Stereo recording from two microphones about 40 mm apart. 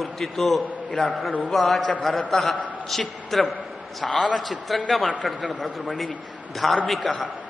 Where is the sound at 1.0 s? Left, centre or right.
Centre.